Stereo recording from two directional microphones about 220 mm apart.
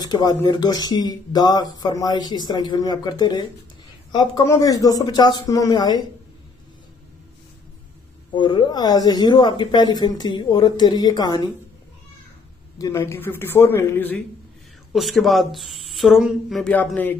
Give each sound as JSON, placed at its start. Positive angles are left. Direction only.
{"t": 0.1, "sound": "speech", "side_deg": 15}
{"t": 8.3, "sound": "speech", "side_deg": 20}
{"t": 12.7, "sound": "speech", "side_deg": 15}